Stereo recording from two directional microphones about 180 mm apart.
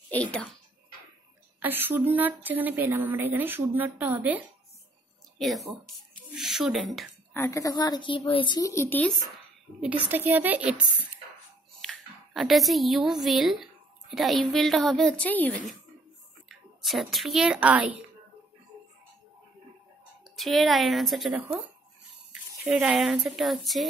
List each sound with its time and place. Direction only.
0.1 s a child's voice: 5° left (ahead or behind)
1.6 s a woman's voice: 10° right (ahead or behind)
6.3 s a sound: centre (ahead or behind)
7.3 s a woman's voice: 15° left (ahead or behind)
9.8 s a woman's voice: 10° right (ahead or behind); by 15.5 s 10° left (ahead or behind)
16.4 s a woman's voice: centre (ahead or behind)
20.2 s a woman's voice: centre (ahead or behind)
22.7 s a woman's voice: 5° right (ahead or behind)